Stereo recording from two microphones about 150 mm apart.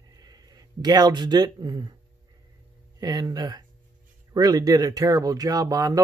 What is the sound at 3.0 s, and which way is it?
Speech, 25° right (ahead or behind).